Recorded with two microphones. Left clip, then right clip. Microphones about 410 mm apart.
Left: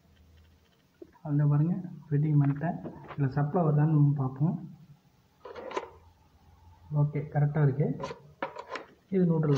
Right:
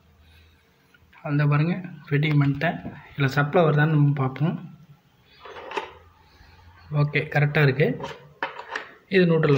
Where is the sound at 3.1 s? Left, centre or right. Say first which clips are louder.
Right 10 dB; left.